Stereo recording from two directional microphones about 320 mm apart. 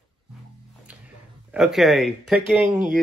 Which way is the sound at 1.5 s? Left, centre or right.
Centre.